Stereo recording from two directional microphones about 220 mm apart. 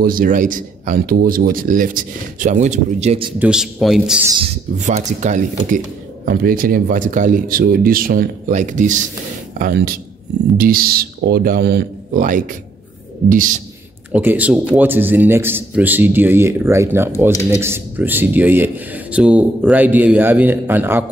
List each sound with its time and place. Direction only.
0.0 s speech: 40° right (ahead or behind)
3.3 s a man's voice: 5° right (ahead or behind)
4.4 s speech: 30° right (ahead or behind)
14.1 s a man's voice: 5° right (ahead or behind)